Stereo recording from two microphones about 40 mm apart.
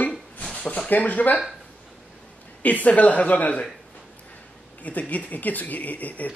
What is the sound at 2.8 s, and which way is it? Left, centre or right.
Speech, left.